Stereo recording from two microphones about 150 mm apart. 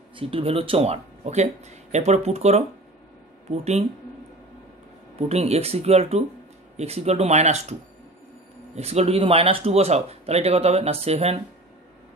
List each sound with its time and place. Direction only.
0.1 s speech: 35° right (ahead or behind)
5.3 s speech: 45° right (ahead or behind)
8.7 s speech: 45° right (ahead or behind)